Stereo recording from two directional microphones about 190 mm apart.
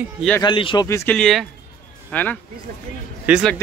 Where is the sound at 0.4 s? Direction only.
25° left (ahead or behind).